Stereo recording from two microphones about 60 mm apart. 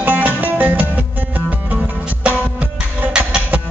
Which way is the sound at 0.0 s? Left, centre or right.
Right.